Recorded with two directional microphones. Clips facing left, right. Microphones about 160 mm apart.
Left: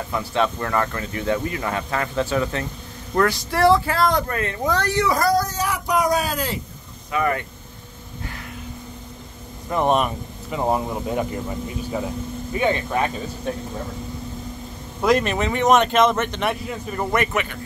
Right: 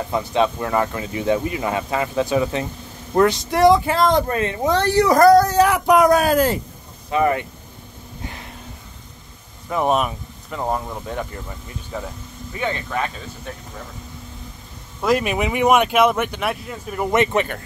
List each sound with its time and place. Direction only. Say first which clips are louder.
0.1 s speech: right 3 dB; 20° right (ahead or behind)
5.0 s speech: right 10 dB; 50° right (ahead or behind)
7.1 s speech: right 4 dB; 25° right (ahead or behind)
9.7 s speech: even; centre (ahead or behind)
10.6 s speech: left 2 dB; 10° left (ahead or behind)
15.0 s speech: even; 5° right (ahead or behind)
17.1 s speech: right 5 dB; 20° right (ahead or behind)